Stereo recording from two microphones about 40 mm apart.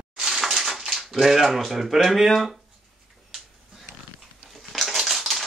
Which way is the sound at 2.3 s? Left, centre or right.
Centre.